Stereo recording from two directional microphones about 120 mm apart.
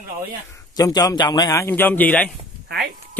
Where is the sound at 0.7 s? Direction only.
30° left (ahead or behind).